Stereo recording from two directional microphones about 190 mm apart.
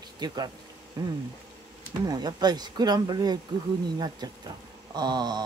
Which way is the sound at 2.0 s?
20° right (ahead or behind).